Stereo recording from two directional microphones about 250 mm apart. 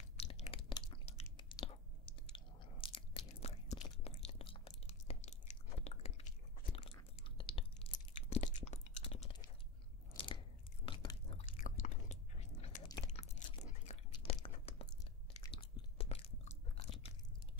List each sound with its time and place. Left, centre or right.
0.2 s crunch: left
1.2 s biting: centre
10.9 s chewing: centre
11.5 s biting: left
14.1 s a sound: left
15.4 s biting: left